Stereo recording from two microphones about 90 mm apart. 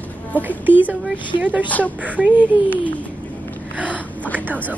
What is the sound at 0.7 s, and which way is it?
Speech, 20° right (ahead or behind).